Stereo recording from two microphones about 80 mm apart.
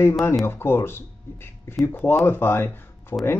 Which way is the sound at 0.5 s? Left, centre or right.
Left.